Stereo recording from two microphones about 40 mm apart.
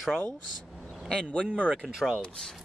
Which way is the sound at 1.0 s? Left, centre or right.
Left.